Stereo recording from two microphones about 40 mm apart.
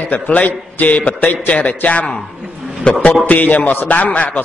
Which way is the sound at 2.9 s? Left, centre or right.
Left.